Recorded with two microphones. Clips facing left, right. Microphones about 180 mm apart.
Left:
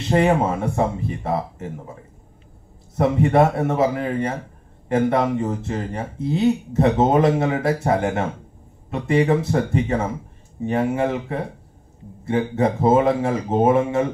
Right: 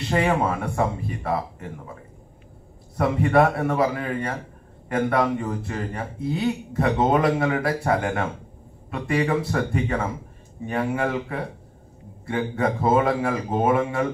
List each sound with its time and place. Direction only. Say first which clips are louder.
0.1 s speech: left 4 dB; 25° left (ahead or behind)
3.0 s speech: left 2 dB; 25° left (ahead or behind)